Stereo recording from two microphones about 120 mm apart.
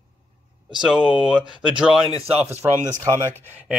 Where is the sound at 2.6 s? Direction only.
20° right (ahead or behind).